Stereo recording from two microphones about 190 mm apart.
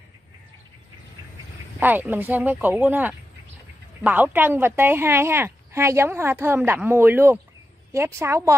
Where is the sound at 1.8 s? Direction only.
10° right (ahead or behind).